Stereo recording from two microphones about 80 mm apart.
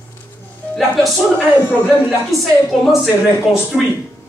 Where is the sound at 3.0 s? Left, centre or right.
Left.